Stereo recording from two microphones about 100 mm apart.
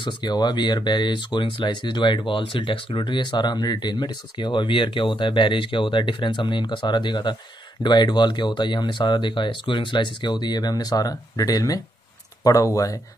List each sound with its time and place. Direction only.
0.0 s speech: 45° left (ahead or behind)